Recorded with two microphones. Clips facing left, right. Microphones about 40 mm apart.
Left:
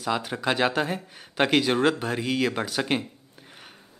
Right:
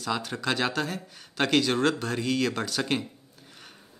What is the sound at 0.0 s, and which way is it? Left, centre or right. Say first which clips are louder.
A man's voice: left 3 dB; centre.